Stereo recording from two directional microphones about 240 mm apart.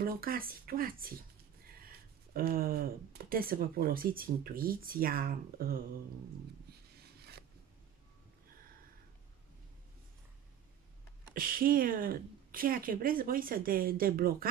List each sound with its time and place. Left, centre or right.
0.0 s speech: right
7.2 s a sound: right
11.3 s speech: right